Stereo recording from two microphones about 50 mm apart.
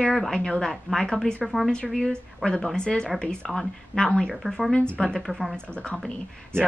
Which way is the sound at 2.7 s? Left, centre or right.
Centre.